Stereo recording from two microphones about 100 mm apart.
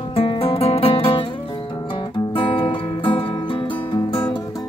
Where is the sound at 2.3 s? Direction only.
60° left (ahead or behind).